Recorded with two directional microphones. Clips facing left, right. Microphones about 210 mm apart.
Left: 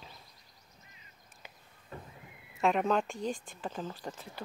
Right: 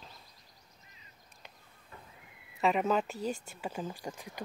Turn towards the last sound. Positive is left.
turn(degrees=-10)  # may be behind; listen again after turning